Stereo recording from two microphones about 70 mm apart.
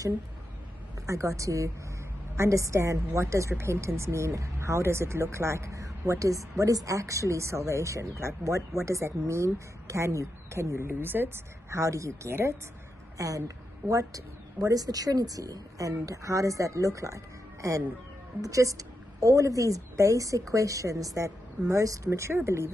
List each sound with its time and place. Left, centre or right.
1.0 s speech: right
11.7 s speech: right
13.2 s a woman's voice: right
22.3 s speech: right